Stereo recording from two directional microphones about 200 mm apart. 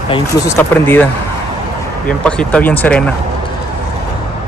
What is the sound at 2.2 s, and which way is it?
Speech, 5° left (ahead or behind).